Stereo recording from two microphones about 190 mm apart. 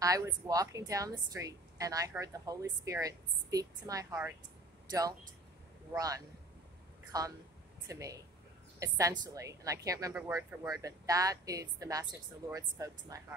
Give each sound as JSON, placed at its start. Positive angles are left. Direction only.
{"t": 0.0, "sound": "a woman's voice", "side_deg": -20}
{"t": 5.9, "sound": "a woman's voice", "side_deg": -20}